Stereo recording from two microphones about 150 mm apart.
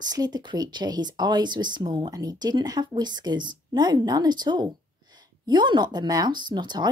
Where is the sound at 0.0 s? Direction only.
25° right (ahead or behind).